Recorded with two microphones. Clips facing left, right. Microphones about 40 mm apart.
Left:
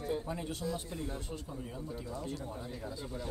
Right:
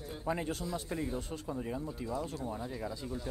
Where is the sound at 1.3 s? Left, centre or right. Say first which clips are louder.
Right 4 dB; right.